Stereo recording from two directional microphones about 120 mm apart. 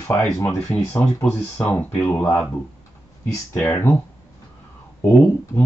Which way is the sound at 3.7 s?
15° left (ahead or behind).